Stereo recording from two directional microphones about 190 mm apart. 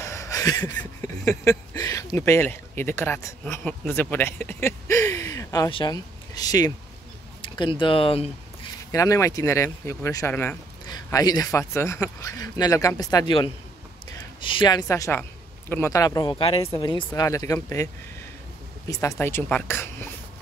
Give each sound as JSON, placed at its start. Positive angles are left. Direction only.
{"t": 0.0, "sound": "a sound", "side_deg": 15}
{"t": 0.7, "sound": "speech", "side_deg": 15}
{"t": 8.9, "sound": "speech", "side_deg": 15}
{"t": 18.9, "sound": "speech", "side_deg": 15}